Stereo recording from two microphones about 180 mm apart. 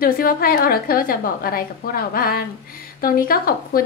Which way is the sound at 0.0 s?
55° left (ahead or behind).